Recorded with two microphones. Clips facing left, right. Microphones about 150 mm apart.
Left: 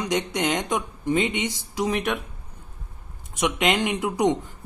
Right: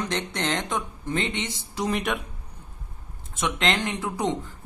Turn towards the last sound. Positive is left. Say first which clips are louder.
# left 5 dB
turn(degrees=20)  # may be behind; listen again after turning